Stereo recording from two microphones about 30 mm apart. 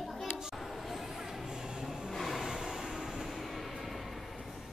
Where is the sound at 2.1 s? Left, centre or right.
Centre.